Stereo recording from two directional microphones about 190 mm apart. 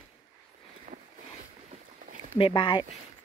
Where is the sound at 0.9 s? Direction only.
45° right (ahead or behind).